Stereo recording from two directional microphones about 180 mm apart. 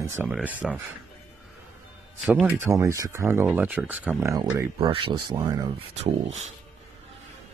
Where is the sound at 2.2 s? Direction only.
5° right (ahead or behind).